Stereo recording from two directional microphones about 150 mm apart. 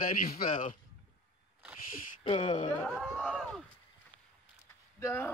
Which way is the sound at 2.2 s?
40° left (ahead or behind).